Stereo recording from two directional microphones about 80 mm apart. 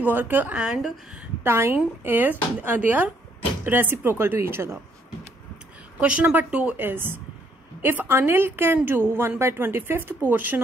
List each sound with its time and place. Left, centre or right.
0.0 s a woman's voice: right
0.6 s a woman's voice: centre
1.4 s a woman's voice: right
5.9 s a woman's voice: centre